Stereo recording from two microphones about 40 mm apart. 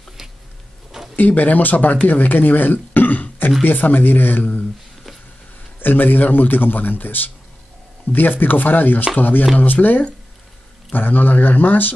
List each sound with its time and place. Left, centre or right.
1.1 s speech: left
5.8 s speech: left